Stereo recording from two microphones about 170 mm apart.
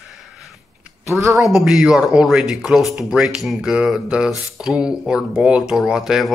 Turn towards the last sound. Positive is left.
turn(degrees=-5)  # may be behind; listen again after turning